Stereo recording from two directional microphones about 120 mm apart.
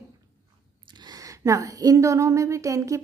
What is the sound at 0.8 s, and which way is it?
Speech, 35° right (ahead or behind).